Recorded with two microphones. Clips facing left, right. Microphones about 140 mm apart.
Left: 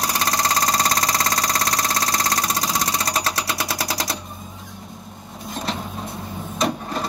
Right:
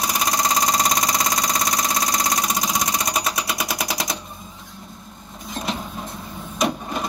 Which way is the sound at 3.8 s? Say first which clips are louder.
Even; 30° left (ahead or behind).